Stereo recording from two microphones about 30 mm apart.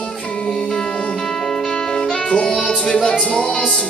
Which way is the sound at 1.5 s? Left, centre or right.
Centre.